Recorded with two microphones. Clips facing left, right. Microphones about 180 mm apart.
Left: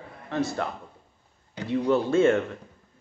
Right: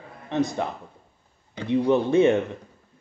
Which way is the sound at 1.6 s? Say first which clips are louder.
Right 3 dB; 20° right (ahead or behind).